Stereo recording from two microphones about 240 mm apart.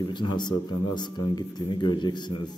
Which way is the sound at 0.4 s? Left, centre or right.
Centre.